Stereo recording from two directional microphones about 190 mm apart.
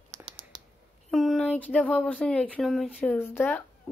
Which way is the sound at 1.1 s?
Centre (ahead or behind).